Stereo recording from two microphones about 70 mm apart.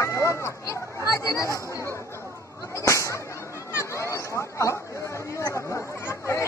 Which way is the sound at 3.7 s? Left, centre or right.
Left.